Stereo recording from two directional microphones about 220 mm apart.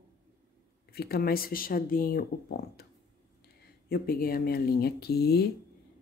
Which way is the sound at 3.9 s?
40° left (ahead or behind).